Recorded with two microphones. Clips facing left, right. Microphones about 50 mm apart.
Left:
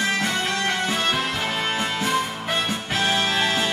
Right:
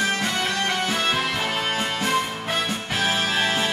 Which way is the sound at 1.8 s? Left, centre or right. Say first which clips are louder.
Even; right.